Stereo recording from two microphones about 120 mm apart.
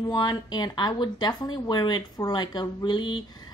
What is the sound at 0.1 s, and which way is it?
A woman's voice, 35° left (ahead or behind).